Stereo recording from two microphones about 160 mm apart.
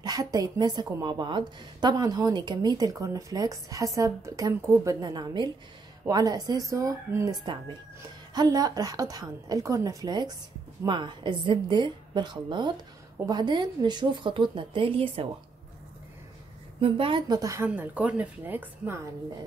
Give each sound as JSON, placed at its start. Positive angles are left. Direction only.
{"t": 0.0, "sound": "a woman's voice", "side_deg": -25}
{"t": 8.4, "sound": "a woman's voice", "side_deg": -25}
{"t": 16.8, "sound": "a woman's voice", "side_deg": -35}
{"t": 17.6, "sound": "speech", "side_deg": -10}